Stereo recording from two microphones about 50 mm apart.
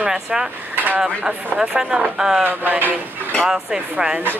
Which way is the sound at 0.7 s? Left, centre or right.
Right.